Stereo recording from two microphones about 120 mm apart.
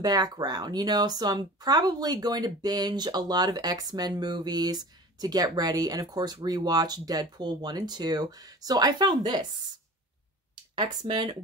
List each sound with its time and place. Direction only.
0.0 s speech: 35° right (ahead or behind)
10.8 s speech: 35° right (ahead or behind)